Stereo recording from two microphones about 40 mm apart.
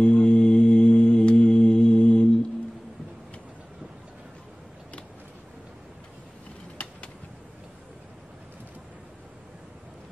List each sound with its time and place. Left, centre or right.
0.0 s music: left